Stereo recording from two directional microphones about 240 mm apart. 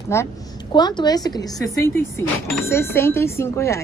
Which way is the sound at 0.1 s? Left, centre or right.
Centre.